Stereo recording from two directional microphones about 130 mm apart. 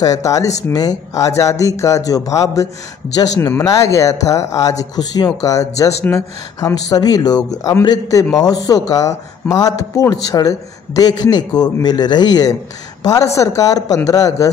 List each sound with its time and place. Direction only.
0.0 s a man's voice: 25° left (ahead or behind)